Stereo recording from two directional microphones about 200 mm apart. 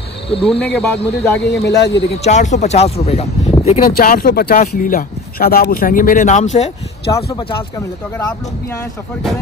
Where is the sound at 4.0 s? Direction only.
45° left (ahead or behind).